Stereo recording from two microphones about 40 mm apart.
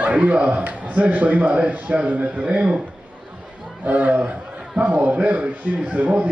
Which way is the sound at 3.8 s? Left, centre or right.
Right.